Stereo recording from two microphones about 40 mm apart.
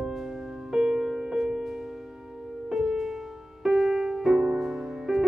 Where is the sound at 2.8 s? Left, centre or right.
Centre.